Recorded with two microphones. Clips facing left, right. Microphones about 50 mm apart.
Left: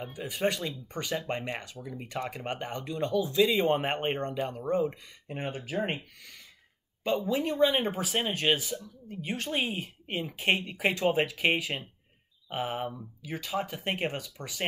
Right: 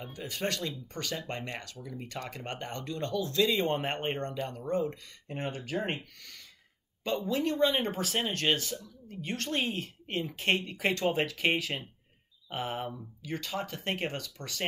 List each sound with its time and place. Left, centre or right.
0.0 s speech: centre